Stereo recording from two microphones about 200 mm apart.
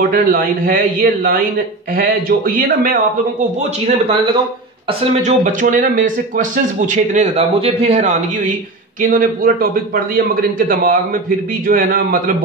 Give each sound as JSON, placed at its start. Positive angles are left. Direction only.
{"t": 0.1, "sound": "speech", "side_deg": -45}
{"t": 3.8, "sound": "speech", "side_deg": -30}
{"t": 5.2, "sound": "speech", "side_deg": -40}